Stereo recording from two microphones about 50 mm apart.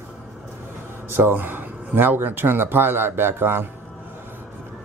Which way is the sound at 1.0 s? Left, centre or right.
Right.